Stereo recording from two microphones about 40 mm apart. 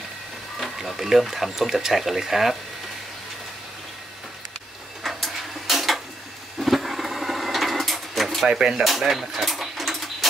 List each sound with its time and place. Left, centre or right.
0.7 s speech: centre
5.0 s a sound: centre
8.5 s speech: centre
8.8 s bird: centre